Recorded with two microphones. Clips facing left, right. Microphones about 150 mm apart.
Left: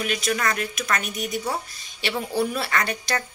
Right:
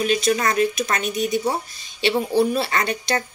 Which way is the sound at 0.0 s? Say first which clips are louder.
Right 5 dB; 30° right (ahead or behind).